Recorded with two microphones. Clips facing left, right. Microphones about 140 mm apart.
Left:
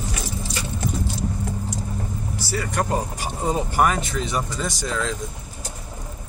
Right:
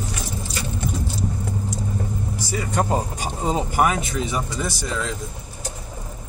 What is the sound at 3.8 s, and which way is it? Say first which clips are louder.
Speech: left 1 dB; 5° right (ahead or behind).